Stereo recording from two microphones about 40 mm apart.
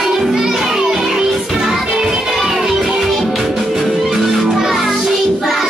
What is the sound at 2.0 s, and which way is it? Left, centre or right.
Music, centre.